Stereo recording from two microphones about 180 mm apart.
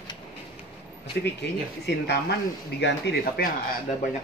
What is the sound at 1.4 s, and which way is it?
Speech, 70° left (ahead or behind).